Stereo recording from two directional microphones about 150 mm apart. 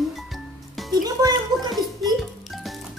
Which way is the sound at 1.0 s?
25° right (ahead or behind).